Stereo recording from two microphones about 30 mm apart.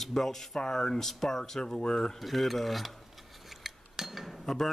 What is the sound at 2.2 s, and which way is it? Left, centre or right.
Cutlery, centre.